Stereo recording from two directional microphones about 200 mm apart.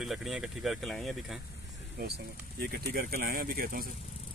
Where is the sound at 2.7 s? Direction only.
50° right (ahead or behind).